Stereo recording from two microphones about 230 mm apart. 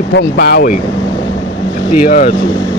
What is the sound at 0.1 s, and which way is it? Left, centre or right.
Speech, left.